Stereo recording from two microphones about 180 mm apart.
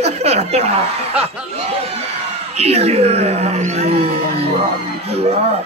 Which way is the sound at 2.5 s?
35° right (ahead or behind).